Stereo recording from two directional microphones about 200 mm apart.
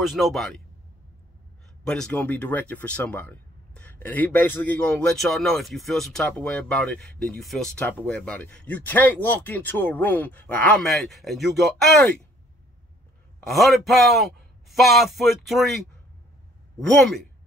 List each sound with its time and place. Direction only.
0.0 s speech: centre (ahead or behind)
1.9 s speech: 5° left (ahead or behind)
13.4 s speech: centre (ahead or behind)
16.8 s speech: centre (ahead or behind)